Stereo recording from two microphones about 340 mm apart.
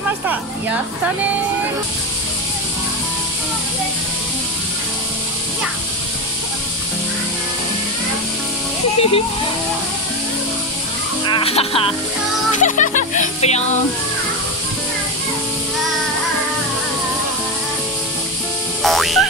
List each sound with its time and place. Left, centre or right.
0.3 s a woman's voice: centre
8.9 s speech: centre
11.2 s speech: centre
18.8 s music: centre